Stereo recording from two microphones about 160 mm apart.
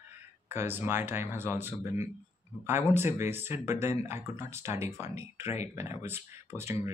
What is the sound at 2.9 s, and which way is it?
Speech, 15° right (ahead or behind).